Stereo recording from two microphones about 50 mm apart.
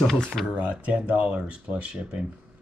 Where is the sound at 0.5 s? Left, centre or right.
Right.